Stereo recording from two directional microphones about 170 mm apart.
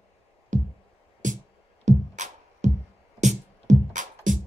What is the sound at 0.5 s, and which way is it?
Music, 45° right (ahead or behind).